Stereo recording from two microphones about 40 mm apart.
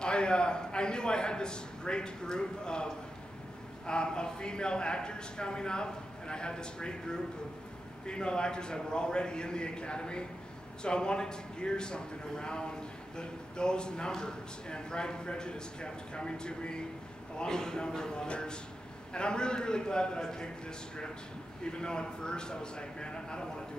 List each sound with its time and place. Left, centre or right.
0.0 s a man's voice: left